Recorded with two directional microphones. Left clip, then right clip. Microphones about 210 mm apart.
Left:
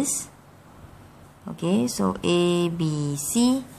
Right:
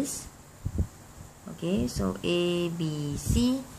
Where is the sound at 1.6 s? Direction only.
25° left (ahead or behind).